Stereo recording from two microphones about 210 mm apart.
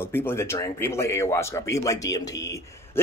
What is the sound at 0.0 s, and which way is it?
Speech, 10° left (ahead or behind).